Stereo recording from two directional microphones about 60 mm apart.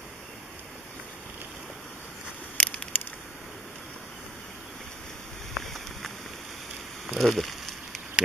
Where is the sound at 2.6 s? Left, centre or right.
Centre.